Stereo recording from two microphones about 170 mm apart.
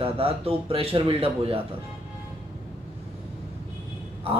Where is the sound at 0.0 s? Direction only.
35° right (ahead or behind).